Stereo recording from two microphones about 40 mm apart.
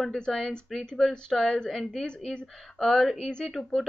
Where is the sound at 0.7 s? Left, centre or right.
Centre.